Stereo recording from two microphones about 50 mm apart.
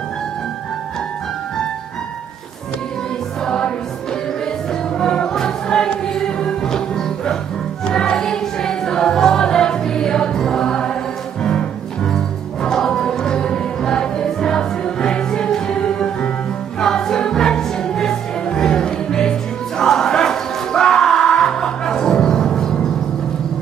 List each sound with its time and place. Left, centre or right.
3.4 s music: centre
4.9 s music: centre